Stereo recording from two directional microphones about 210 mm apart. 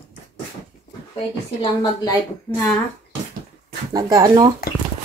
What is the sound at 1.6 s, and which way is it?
Speech, 20° left (ahead or behind).